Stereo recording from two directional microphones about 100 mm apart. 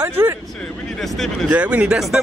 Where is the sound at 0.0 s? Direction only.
25° right (ahead or behind).